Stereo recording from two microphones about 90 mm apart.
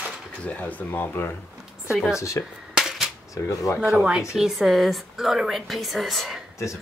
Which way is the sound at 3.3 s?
35° left (ahead or behind).